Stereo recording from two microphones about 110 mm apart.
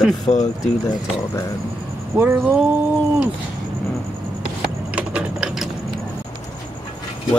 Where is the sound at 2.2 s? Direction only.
20° right (ahead or behind).